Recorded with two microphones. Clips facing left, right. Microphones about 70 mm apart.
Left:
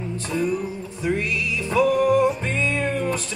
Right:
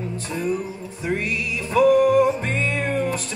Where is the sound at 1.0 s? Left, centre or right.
Right.